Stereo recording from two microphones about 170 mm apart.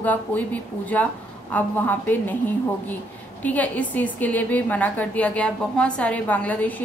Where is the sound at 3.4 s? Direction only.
10° left (ahead or behind).